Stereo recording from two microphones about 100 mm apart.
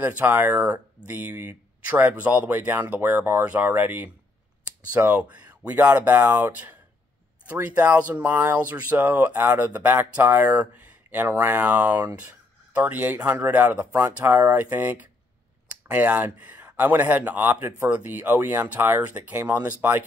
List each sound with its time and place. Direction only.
0.0 s speech: 20° right (ahead or behind)